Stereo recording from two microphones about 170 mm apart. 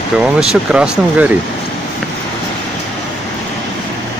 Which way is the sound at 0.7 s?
5° right (ahead or behind).